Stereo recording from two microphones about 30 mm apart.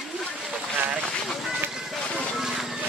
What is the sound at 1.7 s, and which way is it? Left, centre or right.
Music, centre.